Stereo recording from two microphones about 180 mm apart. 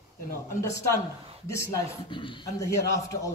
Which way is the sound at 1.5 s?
15° left (ahead or behind).